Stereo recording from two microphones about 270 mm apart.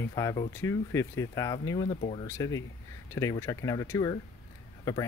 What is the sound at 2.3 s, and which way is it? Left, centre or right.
Speech, centre.